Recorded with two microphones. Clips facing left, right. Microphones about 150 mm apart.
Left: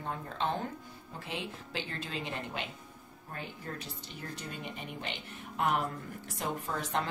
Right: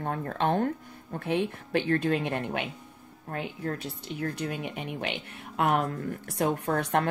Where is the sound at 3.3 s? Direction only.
70° right (ahead or behind).